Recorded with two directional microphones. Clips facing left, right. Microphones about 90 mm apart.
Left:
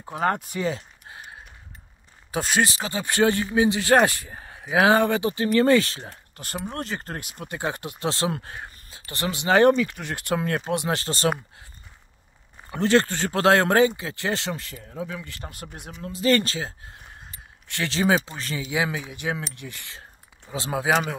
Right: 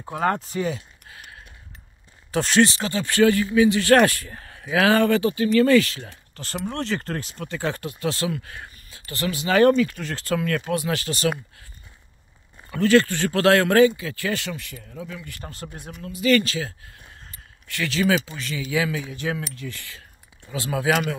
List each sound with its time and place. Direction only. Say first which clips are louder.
0.7 s a sound: even; 30° left (ahead or behind)
2.3 s speech: right 5 dB; 10° left (ahead or behind); by 8.5 s 35° left (ahead or behind)
8.5 s speech: left 1 dB; 20° left (ahead or behind)
12.7 s speech: right 3 dB; 30° left (ahead or behind)
14.5 s speech: left 2 dB; 40° left (ahead or behind)
15.5 s speech: right 2 dB; 20° left (ahead or behind)
16.0 s speech: right 1 dB; 35° left (ahead or behind)
17.2 s a sound: left 1 dB; 25° left (ahead or behind)
18.3 s speech: right 1 dB; 35° left (ahead or behind)
18.7 s speech: right 2 dB; 20° left (ahead or behind)